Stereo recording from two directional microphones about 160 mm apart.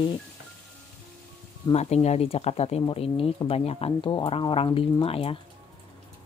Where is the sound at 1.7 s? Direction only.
40° left (ahead or behind).